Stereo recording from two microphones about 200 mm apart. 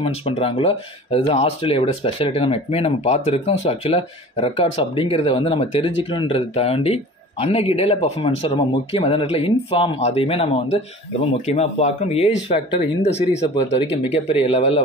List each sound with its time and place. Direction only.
0.0 s speech: 30° left (ahead or behind)
13.4 s speech: 30° left (ahead or behind)